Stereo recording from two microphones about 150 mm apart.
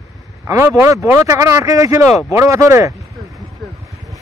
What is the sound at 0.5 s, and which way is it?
Speech, 15° right (ahead or behind).